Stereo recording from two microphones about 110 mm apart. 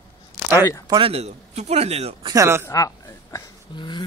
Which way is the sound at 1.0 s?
65° right (ahead or behind).